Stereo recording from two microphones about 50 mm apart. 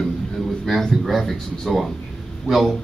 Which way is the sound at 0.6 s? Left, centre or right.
Centre.